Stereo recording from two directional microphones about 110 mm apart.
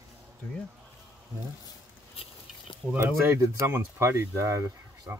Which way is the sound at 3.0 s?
20° right (ahead or behind).